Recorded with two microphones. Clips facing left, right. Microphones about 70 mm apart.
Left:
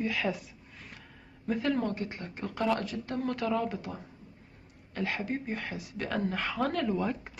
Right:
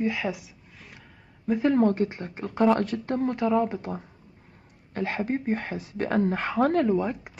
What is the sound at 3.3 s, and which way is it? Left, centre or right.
Speech, right.